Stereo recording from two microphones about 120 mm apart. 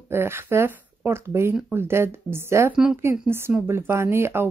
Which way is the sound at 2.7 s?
5° right (ahead or behind).